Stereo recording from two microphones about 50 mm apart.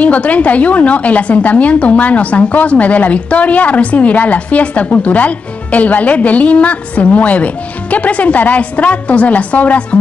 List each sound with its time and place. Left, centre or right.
0.0 s a woman's voice: left